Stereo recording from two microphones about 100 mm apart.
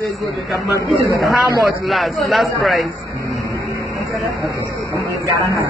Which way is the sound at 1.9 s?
Centre (ahead or behind).